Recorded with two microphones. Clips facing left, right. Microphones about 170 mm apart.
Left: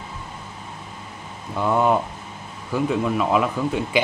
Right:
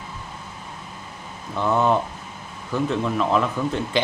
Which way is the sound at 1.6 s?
10° left (ahead or behind).